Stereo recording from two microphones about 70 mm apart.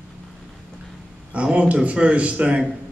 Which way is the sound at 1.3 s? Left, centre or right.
Centre.